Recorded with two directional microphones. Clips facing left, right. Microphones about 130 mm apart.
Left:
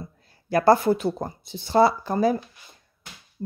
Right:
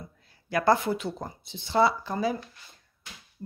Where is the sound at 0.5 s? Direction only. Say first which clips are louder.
Left 6 dB; 35° left (ahead or behind).